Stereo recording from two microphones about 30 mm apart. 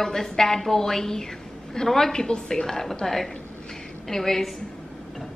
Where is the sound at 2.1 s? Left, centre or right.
Left.